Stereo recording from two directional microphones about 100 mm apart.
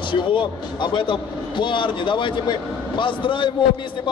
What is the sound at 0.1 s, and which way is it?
A man's voice, 55° left (ahead or behind).